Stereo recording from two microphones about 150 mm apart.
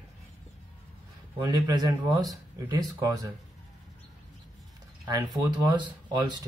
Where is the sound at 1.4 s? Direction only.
25° right (ahead or behind).